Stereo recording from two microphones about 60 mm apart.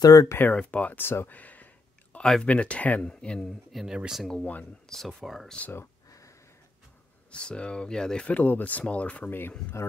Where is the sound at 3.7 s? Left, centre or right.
Centre.